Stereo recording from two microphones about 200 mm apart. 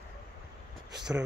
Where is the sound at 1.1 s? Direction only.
10° right (ahead or behind).